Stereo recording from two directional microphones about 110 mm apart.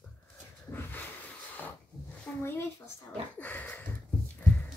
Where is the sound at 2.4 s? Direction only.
20° left (ahead or behind).